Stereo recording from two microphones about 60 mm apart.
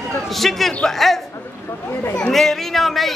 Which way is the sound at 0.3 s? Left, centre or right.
Centre.